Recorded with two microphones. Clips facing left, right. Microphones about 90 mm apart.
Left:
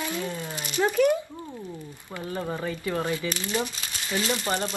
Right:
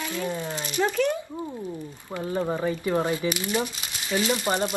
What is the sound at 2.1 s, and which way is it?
Speech, 25° right (ahead or behind).